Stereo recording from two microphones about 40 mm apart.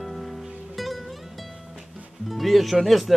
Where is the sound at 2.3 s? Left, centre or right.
Centre.